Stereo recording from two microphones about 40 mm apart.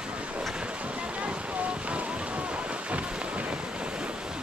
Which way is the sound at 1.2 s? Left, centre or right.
Right.